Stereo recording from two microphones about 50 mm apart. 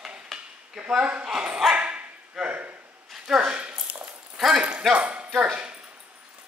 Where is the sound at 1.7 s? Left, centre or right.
Right.